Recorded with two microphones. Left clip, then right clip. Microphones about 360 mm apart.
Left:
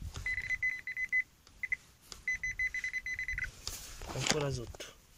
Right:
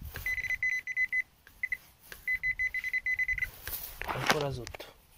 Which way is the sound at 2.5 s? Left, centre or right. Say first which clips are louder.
Right 3 dB; centre.